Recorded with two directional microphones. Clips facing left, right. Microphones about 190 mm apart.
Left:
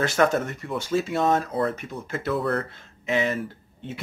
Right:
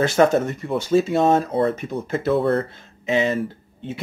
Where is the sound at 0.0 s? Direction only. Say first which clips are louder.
Right 5 dB; 25° right (ahead or behind).